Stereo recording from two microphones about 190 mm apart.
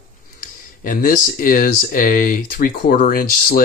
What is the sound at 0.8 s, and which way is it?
Speech, 45° left (ahead or behind).